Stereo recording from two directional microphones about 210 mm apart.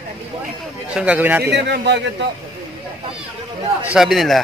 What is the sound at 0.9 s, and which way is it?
Speech, 5° right (ahead or behind).